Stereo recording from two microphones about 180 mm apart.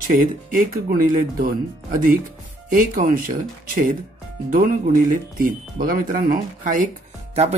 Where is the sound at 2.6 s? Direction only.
50° right (ahead or behind).